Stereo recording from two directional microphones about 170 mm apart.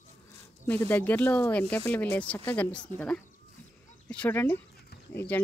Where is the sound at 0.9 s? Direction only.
10° left (ahead or behind).